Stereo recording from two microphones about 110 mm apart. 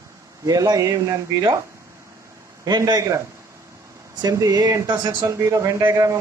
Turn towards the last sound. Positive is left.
turn(degrees=-30)  # may be behind; listen again after turning